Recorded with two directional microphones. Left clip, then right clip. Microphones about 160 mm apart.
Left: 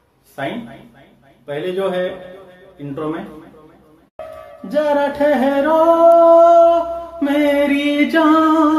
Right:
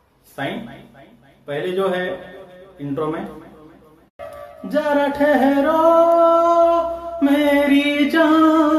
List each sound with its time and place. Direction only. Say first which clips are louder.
0.4 s a man's voice: left 2 dB; 10° left (ahead or behind)
4.6 s music: left 2 dB; 5° left (ahead or behind)